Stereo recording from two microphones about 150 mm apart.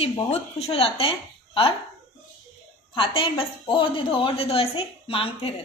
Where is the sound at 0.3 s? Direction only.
45° left (ahead or behind).